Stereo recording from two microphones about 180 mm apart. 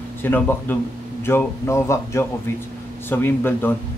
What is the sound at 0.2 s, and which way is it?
Speech, 10° left (ahead or behind).